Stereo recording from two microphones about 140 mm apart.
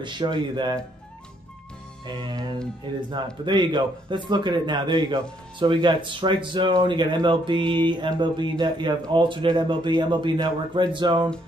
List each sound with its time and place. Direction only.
0.0 s speech: 35° right (ahead or behind)
2.0 s speech: 35° right (ahead or behind)